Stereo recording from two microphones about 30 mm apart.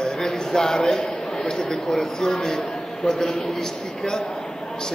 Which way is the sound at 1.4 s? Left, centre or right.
Left.